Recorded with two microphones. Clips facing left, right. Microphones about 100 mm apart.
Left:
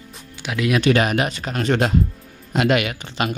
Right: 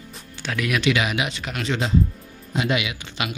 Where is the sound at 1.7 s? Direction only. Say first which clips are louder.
Left 3 dB; 60° left (ahead or behind); by 3.4 s 45° left (ahead or behind).